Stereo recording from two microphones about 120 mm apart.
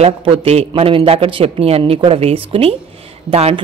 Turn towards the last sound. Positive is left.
turn(degrees=-55)  # may be behind; listen again after turning